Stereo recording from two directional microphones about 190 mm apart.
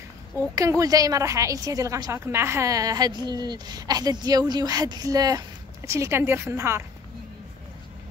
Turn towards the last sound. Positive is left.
turn(degrees=-15)  # may be behind; listen again after turning